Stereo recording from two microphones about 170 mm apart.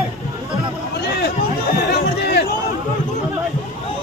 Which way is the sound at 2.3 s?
75° left (ahead or behind).